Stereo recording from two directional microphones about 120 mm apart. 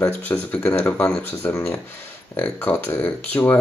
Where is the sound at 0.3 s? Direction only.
15° left (ahead or behind).